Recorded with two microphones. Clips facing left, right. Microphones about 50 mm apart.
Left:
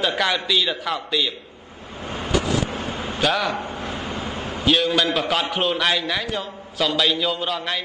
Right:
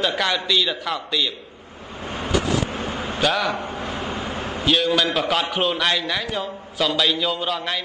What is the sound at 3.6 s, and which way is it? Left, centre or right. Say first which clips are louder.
Vehicle: right 1 dB; right.